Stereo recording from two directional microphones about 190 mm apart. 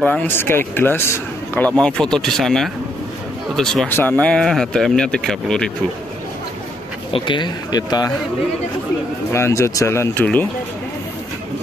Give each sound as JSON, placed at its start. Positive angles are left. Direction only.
{"t": 0.0, "sound": "speech", "side_deg": 5}
{"t": 7.1, "sound": "speech", "side_deg": 25}
{"t": 9.3, "sound": "speech", "side_deg": 15}